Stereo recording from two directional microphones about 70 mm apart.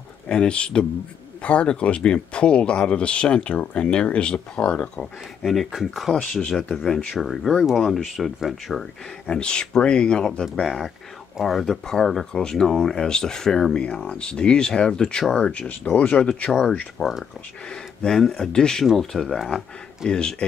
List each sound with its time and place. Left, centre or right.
0.3 s speech: centre
5.4 s speech: centre
9.2 s speech: centre
20.1 s speech: centre